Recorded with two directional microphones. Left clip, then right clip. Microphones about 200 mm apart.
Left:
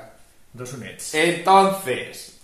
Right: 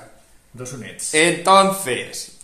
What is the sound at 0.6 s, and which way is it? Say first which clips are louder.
Speech: right 1 dB; centre (ahead or behind).